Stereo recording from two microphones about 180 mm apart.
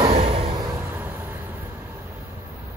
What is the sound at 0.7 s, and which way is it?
Vehicle, 10° right (ahead or behind).